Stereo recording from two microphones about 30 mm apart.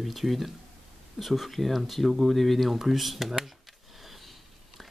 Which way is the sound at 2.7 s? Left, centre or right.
Centre.